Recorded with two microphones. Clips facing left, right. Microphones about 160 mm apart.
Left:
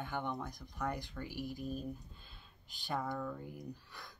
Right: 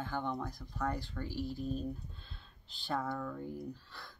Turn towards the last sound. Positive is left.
turn(degrees=15)  # may be behind; listen again after turning